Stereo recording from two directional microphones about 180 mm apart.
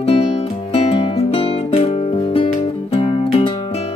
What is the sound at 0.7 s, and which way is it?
Music, 30° left (ahead or behind).